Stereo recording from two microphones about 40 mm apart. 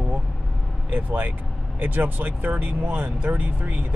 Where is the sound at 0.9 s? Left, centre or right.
Right.